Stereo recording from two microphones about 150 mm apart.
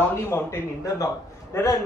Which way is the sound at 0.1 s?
15° left (ahead or behind).